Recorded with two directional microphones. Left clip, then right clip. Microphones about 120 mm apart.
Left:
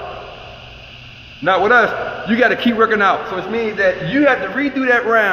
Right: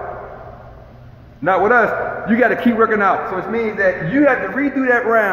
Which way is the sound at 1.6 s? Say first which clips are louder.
Left 1 dB; 15° left (ahead or behind).